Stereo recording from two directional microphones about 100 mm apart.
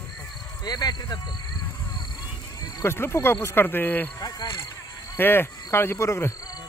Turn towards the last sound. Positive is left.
turn(degrees=25)  # may be behind; listen again after turning